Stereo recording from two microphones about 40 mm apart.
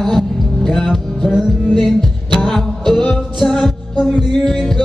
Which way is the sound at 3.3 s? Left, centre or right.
Centre.